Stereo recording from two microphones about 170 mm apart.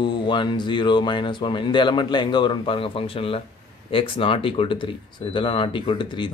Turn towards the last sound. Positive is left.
turn(degrees=30)  # may be behind; listen again after turning